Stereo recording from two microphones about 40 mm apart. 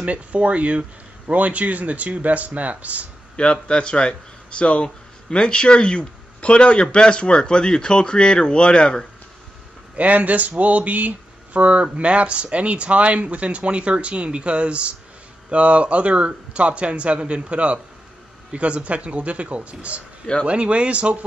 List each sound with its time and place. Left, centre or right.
0.0 s speech: right
3.3 s speech: left
9.9 s speech: right